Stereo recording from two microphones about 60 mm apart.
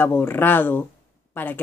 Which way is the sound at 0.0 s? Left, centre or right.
Left.